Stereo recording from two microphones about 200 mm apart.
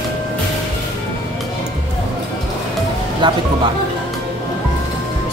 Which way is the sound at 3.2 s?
25° right (ahead or behind).